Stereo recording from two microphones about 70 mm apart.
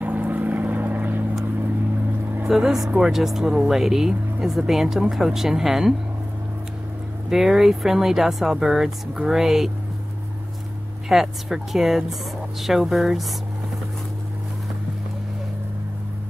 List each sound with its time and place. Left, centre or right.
0.0 s vehicle: right
2.4 s speech: centre
7.2 s speech: centre
11.1 s speech: centre